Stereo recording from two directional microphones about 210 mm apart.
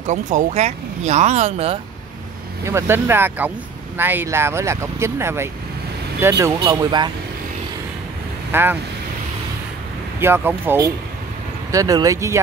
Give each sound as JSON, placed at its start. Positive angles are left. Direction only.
{"t": 0.0, "sound": "speech", "side_deg": -35}
{"t": 2.6, "sound": "speech", "side_deg": -10}
{"t": 8.5, "sound": "speech", "side_deg": -10}
{"t": 10.2, "sound": "speech", "side_deg": -10}